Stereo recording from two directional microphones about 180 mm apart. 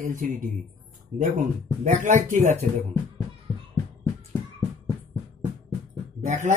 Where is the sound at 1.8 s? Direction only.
45° right (ahead or behind).